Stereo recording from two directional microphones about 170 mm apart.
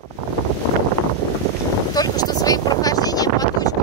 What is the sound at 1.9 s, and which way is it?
Wind noise, 20° left (ahead or behind).